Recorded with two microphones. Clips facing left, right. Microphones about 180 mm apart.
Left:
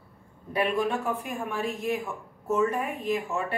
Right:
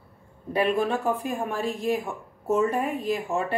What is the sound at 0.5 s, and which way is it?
Speech, 30° right (ahead or behind).